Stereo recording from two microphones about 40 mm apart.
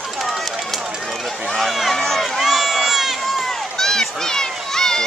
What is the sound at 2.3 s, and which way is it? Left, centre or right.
Run, centre.